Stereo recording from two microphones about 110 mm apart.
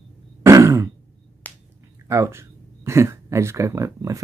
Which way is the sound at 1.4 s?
15° left (ahead or behind).